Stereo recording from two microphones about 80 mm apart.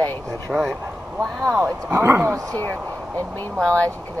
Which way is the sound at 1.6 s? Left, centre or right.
Right.